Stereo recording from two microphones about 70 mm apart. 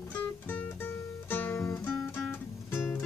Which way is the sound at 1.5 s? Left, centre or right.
Left.